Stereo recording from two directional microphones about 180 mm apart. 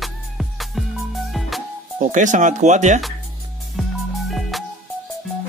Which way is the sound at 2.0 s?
45° right (ahead or behind).